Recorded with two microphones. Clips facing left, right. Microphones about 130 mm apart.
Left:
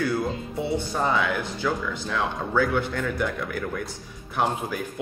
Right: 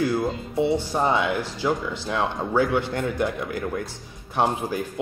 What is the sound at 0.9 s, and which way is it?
Speech, 25° right (ahead or behind).